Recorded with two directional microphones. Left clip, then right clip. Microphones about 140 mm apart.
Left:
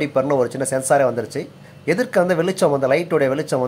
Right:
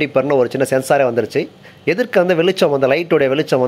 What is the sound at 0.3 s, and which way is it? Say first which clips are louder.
Speech: right 5 dB; 20° right (ahead or behind).